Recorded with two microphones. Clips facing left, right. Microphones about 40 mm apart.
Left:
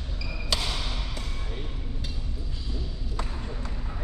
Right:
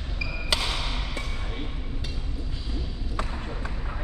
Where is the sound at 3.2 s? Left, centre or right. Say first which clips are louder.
Right 3 dB; right.